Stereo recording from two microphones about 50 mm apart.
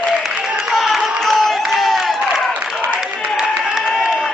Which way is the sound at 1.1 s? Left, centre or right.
Centre.